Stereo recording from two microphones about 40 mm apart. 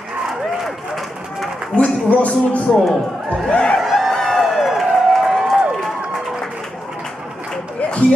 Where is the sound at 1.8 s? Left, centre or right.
Left.